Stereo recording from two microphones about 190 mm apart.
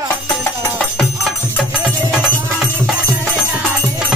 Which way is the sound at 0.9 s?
Centre (ahead or behind).